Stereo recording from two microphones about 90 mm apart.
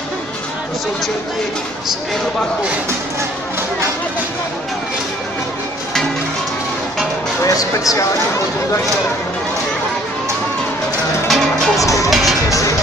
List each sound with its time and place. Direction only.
7.4 s speech: 40° left (ahead or behind)
11.2 s music: centre (ahead or behind)
11.7 s music: 40° left (ahead or behind)
12.1 s music: centre (ahead or behind)
12.4 s music: 40° left (ahead or behind)